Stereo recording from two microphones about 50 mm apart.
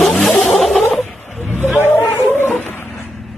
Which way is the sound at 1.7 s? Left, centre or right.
Left.